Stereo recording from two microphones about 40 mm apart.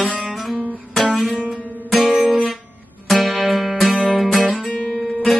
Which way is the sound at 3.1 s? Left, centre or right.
Centre.